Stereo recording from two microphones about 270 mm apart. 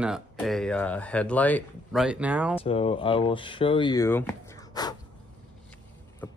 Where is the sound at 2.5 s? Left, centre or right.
Left.